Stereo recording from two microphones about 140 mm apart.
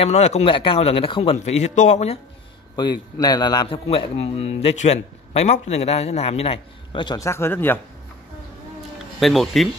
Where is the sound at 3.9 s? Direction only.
45° left (ahead or behind).